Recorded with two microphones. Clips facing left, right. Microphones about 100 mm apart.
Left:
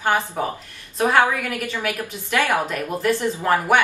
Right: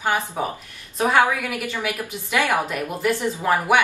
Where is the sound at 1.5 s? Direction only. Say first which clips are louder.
Left 1 dB; 10° right (ahead or behind).